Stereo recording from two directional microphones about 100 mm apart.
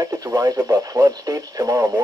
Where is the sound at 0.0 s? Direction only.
35° right (ahead or behind).